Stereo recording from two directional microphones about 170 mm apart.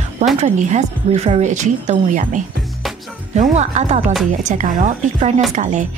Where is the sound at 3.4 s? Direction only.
40° right (ahead or behind).